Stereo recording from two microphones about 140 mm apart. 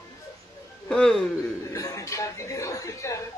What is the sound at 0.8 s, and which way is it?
Speech, 5° left (ahead or behind).